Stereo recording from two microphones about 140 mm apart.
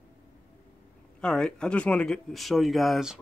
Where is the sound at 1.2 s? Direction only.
5° left (ahead or behind).